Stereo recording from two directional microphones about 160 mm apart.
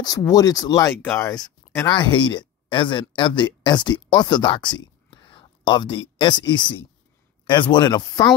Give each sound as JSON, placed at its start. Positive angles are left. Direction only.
{"t": 0.0, "sound": "speech", "side_deg": 25}